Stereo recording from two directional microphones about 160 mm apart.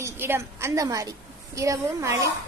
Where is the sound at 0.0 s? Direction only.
15° right (ahead or behind).